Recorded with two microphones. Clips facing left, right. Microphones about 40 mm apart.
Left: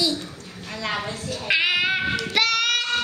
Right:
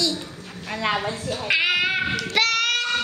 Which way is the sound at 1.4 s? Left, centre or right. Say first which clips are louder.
Even; centre.